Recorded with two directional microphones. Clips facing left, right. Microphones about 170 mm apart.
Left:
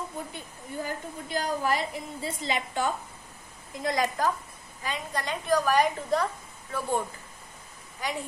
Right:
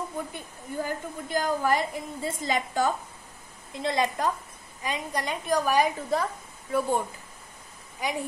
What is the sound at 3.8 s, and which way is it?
Speech, 25° right (ahead or behind).